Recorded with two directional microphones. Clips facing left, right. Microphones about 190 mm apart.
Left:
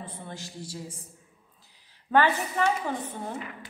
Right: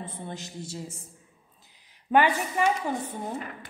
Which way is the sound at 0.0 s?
20° right (ahead or behind).